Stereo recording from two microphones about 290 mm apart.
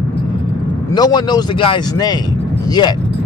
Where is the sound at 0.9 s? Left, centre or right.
Centre.